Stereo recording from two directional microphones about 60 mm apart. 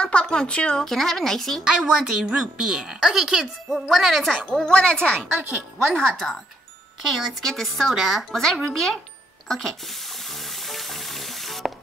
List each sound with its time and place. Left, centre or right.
0.0 s speech: centre
0.8 s speech: centre
1.6 s a woman's voice: centre
4.7 s speech: centre
8.3 s speech: centre
10.3 s water: centre